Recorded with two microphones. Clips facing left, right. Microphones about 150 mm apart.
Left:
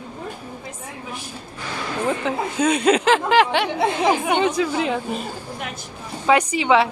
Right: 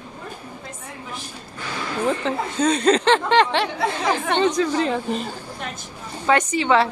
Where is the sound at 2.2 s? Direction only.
10° left (ahead or behind).